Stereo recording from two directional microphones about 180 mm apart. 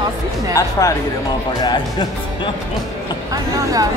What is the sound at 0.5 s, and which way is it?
Speech, 20° left (ahead or behind).